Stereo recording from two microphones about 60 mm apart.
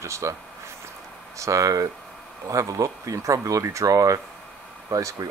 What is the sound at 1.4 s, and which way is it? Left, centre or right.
Speech, right.